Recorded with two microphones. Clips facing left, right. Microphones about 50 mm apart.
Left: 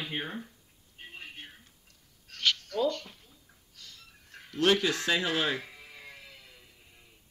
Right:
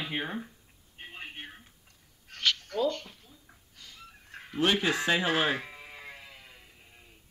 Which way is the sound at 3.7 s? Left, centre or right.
Centre.